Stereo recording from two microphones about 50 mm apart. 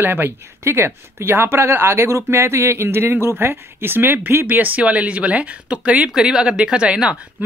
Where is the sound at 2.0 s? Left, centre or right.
Right.